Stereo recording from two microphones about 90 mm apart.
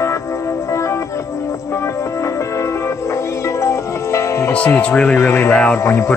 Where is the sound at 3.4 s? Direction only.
35° left (ahead or behind).